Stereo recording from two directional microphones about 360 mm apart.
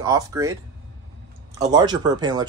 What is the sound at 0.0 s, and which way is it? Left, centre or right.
Speech, centre.